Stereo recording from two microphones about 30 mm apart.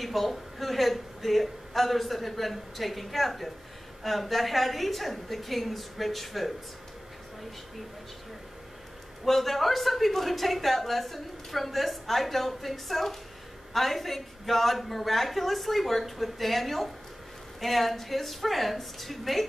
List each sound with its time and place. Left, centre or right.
0.0 s a woman's voice: centre
9.2 s a woman's voice: centre